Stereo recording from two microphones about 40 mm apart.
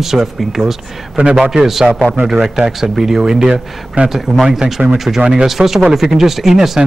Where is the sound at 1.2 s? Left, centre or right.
Right.